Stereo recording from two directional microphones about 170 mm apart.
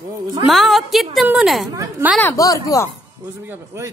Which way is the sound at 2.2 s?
20° left (ahead or behind).